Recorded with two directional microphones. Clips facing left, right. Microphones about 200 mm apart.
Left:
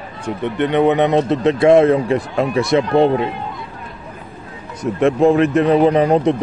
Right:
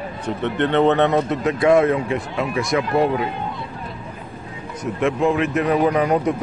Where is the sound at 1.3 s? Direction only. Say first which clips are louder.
Left 5 dB; 25° left (ahead or behind).